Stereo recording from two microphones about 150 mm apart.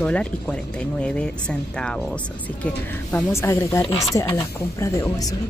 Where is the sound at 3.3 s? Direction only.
20° left (ahead or behind).